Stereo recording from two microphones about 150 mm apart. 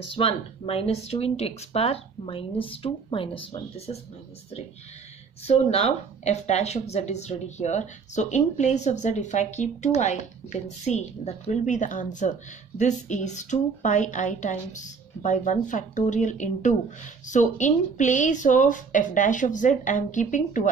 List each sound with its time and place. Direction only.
0.1 s speech: 40° left (ahead or behind)
5.4 s speech: 45° left (ahead or behind)